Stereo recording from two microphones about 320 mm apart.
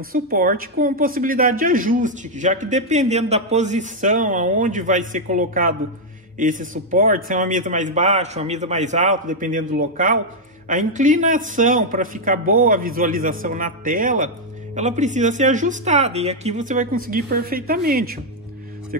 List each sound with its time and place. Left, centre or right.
0.1 s a woman's voice: right